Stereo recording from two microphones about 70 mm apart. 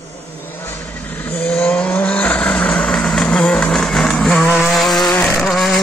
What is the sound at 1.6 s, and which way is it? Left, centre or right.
Vehicle, left.